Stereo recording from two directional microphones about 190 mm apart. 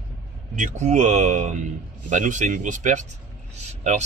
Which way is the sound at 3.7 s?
35° right (ahead or behind).